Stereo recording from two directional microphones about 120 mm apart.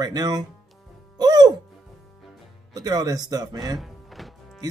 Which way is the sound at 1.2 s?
30° right (ahead or behind).